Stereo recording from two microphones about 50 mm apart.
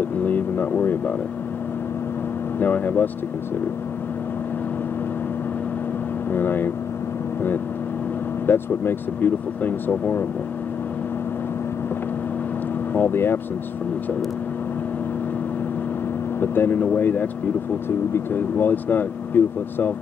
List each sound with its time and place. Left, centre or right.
0.2 s speech: left
2.6 s speech: left
6.3 s speech: left
8.5 s speech: left
12.9 s speech: left
16.3 s speech: left